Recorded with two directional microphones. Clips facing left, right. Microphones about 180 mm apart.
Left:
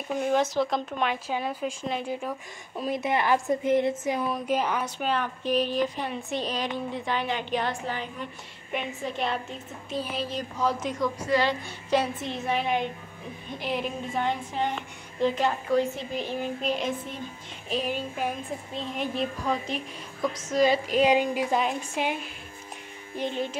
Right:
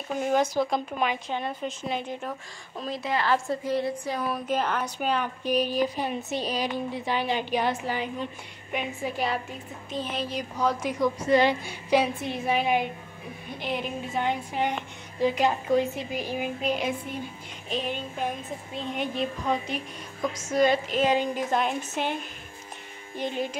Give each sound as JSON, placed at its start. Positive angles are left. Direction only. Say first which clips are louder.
{"t": 0.2, "sound": "speech", "louder": "right 1 dB", "side_deg": 0}
{"t": 1.3, "sound": "speech", "louder": "left 1 dB", "side_deg": 5}
{"t": 2.8, "sound": "a woman's voice", "louder": "left 2 dB", "side_deg": 20}
{"t": 4.5, "sound": "a woman's voice", "louder": "even", "side_deg": 10}
{"t": 4.9, "sound": "a woman's voice", "louder": "right 1 dB", "side_deg": 0}
{"t": 10.8, "sound": "a woman's voice", "louder": "right 2 dB", "side_deg": -10}
{"t": 11.9, "sound": "a woman's voice", "louder": "right 2 dB", "side_deg": -10}
{"t": 17.6, "sound": "a woman's voice", "louder": "left 2 dB", "side_deg": 5}
{"t": 21.5, "sound": "speech", "louder": "even", "side_deg": 0}